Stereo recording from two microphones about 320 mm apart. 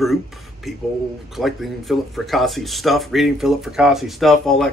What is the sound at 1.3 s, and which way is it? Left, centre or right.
Speech, centre.